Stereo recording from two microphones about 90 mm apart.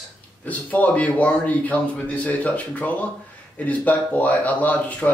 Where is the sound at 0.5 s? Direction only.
20° left (ahead or behind).